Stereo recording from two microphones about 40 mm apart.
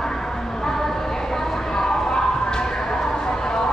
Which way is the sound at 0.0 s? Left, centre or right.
Centre.